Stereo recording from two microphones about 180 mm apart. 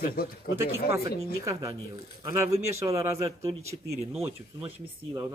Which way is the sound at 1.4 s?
20° right (ahead or behind).